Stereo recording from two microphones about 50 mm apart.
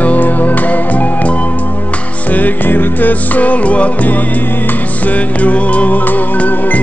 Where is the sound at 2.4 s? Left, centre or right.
Left.